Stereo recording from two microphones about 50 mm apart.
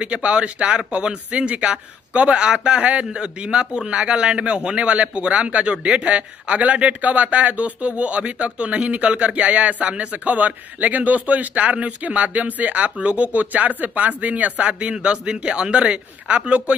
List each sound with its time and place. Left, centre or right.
0.0 s a man's voice: right